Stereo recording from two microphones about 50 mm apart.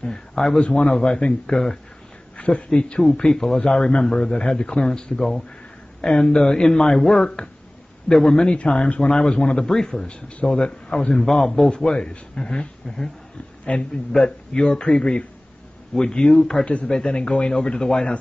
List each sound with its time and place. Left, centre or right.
0.0 s speech: centre
2.3 s speech: left
10.0 s a man's voice: left
11.2 s a man's voice: centre
16.6 s a man's voice: left